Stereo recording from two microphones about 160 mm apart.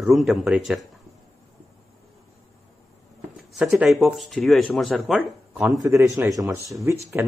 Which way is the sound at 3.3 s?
5° right (ahead or behind).